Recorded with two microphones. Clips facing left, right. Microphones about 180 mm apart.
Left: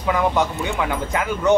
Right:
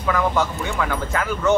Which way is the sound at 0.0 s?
20° left (ahead or behind).